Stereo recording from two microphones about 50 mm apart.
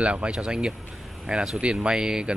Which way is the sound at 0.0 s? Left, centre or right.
Right.